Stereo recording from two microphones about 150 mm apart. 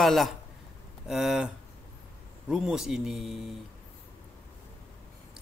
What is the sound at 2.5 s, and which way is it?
Speech, 5° right (ahead or behind).